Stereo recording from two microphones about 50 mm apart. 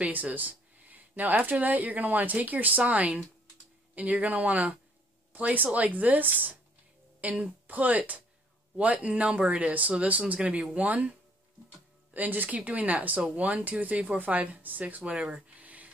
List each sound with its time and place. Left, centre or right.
0.0 s a woman's voice: right
15.0 s speech: centre
15.6 s a sound: right